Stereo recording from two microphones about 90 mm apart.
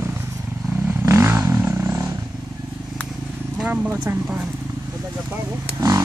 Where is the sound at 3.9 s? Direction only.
25° right (ahead or behind).